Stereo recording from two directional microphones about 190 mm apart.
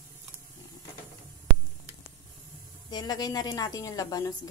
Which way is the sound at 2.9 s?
20° left (ahead or behind).